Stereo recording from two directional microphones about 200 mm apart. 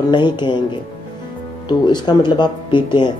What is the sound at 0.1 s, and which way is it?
Speech, 20° left (ahead or behind).